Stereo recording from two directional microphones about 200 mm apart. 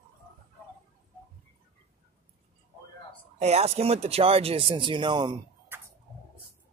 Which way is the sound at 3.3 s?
30° right (ahead or behind).